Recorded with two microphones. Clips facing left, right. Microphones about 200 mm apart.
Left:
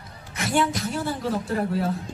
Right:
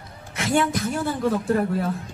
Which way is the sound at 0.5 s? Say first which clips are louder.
Right 2 dB; 50° right (ahead or behind).